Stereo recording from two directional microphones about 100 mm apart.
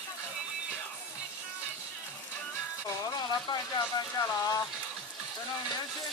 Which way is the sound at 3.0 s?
40° left (ahead or behind).